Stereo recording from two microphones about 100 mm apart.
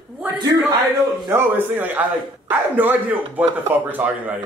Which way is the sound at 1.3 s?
20° right (ahead or behind).